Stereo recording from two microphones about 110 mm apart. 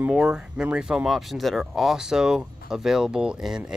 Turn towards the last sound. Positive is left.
turn(degrees=-5)  # may be behind; listen again after turning